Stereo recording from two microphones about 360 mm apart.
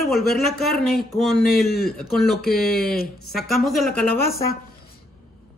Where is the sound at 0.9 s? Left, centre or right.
Centre.